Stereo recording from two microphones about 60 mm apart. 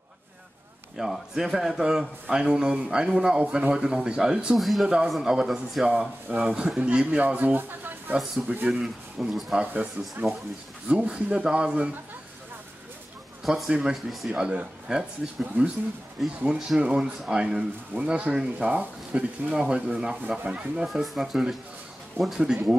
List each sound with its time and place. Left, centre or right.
0.9 s a man's voice: centre
4.6 s speech: centre
4.8 s a man's voice: centre
6.2 s speech: right
6.5 s a man's voice: centre
7.5 s speech: right
8.6 s a man's voice: centre
10.9 s a man's voice: centre
13.4 s a man's voice: centre
15.4 s speech: right
16.4 s a man's voice: centre
18.7 s a man's voice: right
20.8 s a man's voice: centre